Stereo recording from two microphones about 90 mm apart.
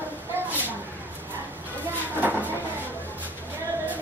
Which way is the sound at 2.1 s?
20° right (ahead or behind).